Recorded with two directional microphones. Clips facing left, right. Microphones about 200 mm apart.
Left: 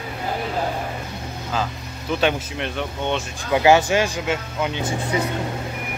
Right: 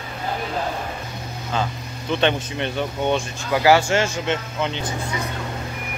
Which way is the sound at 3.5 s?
20° left (ahead or behind).